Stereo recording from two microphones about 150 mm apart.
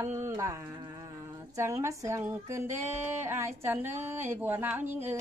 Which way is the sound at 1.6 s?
20° right (ahead or behind).